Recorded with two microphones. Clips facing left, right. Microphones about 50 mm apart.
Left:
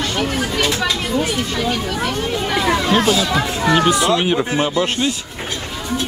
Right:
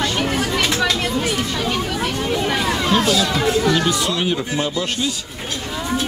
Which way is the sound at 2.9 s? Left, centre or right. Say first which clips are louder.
Right 1 dB; left.